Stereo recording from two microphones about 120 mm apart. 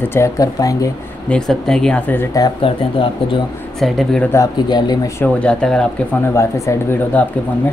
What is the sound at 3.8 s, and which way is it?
Speech, 5° left (ahead or behind).